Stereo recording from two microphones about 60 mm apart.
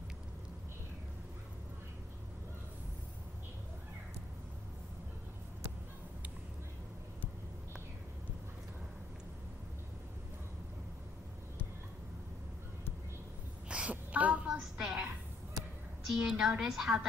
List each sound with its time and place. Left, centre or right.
13.7 s a sound: centre
14.8 s a woman's voice: centre
16.1 s a woman's voice: centre